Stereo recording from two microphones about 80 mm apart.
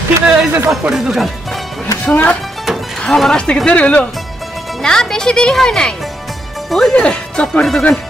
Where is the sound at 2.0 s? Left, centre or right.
Centre.